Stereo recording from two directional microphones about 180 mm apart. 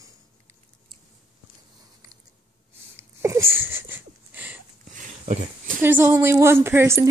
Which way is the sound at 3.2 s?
15° right (ahead or behind).